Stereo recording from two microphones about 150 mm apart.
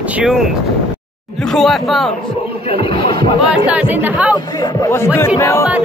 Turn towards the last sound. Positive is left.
turn(degrees=20)  # may be behind; listen again after turning